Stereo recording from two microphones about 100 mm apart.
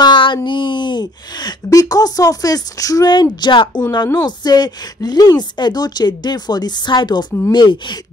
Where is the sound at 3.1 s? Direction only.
50° left (ahead or behind).